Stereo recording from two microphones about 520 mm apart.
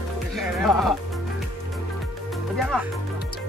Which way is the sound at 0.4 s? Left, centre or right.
Centre.